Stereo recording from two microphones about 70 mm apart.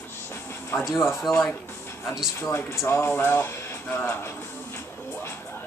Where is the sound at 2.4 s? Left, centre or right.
Left.